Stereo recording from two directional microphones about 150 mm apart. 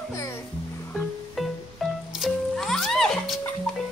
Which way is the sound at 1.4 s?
Centre (ahead or behind).